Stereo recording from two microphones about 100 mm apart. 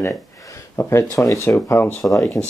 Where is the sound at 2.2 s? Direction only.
5° left (ahead or behind).